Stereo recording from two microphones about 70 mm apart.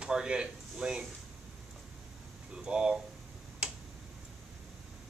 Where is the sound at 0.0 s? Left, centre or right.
Centre.